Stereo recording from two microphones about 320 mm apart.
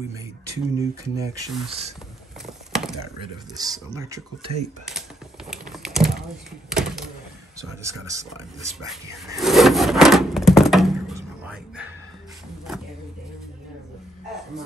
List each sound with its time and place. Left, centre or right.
0.5 s speech: centre
2.4 s typing: centre
3.2 s speech: centre
4.8 s typing: centre
7.8 s speech: centre